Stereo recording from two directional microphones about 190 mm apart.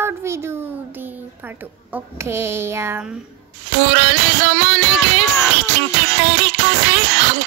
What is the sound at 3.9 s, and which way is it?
Music, 70° right (ahead or behind).